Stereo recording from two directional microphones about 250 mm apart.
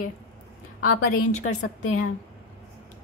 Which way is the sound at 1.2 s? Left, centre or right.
Left.